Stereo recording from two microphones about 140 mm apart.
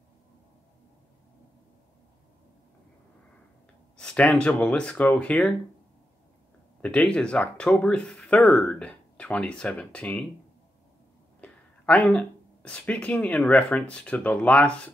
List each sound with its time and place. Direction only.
3.9 s speech: 5° left (ahead or behind)
6.8 s speech: 10° left (ahead or behind)
11.4 s speech: 5° left (ahead or behind)